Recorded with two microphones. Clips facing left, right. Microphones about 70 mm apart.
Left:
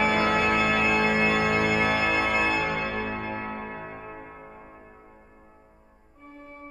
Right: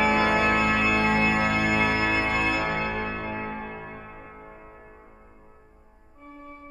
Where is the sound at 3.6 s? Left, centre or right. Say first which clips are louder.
Even; left.